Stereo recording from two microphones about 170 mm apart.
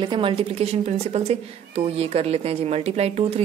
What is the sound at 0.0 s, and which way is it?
Speech, 30° right (ahead or behind).